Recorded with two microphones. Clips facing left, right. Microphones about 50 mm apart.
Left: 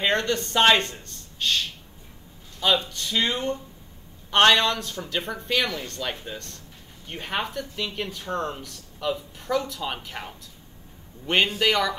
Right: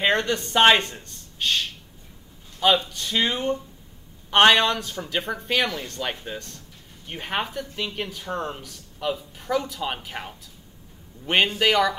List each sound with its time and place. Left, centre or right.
0.0 s speech: centre
2.9 s speech: centre